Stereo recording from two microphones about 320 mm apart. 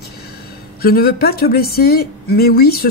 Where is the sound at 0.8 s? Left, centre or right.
Left.